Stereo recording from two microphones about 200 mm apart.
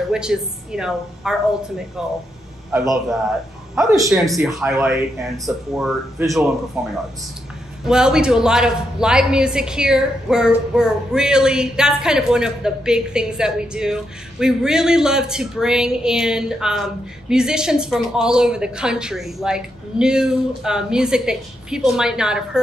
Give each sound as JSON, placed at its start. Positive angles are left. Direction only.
{"t": 0.1, "sound": "a woman's voice", "side_deg": -5}
{"t": 2.7, "sound": "a man's voice", "side_deg": -15}
{"t": 4.1, "sound": "a woman's voice", "side_deg": 0}
{"t": 7.8, "sound": "a woman's voice", "side_deg": -5}